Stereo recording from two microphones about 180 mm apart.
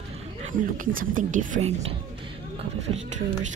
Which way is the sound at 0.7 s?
50° right (ahead or behind).